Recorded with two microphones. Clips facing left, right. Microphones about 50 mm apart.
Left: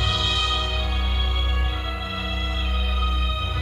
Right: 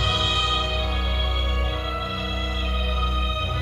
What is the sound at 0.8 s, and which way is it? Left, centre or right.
Music, centre.